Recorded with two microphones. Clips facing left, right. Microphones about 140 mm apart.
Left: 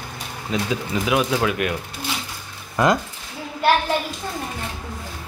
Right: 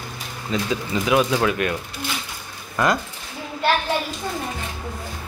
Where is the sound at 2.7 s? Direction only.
20° left (ahead or behind).